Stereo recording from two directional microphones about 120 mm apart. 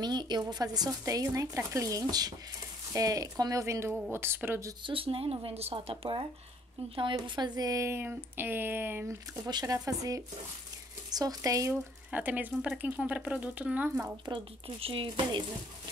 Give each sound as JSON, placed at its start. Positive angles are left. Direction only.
{"t": 0.0, "sound": "speech", "side_deg": -35}
{"t": 4.8, "sound": "speech", "side_deg": -50}
{"t": 7.0, "sound": "speech", "side_deg": -40}
{"t": 9.5, "sound": "speech", "side_deg": -30}
{"t": 11.7, "sound": "speech", "side_deg": -15}
{"t": 14.8, "sound": "speech", "side_deg": -50}